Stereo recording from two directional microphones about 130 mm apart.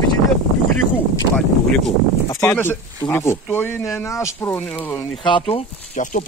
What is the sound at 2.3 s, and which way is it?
Speech, 15° left (ahead or behind).